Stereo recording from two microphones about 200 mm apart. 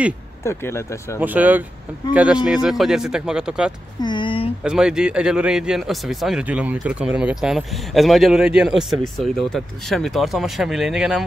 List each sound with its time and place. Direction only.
0.4 s speech: 15° left (ahead or behind)
1.2 s speech: 10° right (ahead or behind)
4.0 s a sound: 25° left (ahead or behind)
4.6 s speech: 5° right (ahead or behind)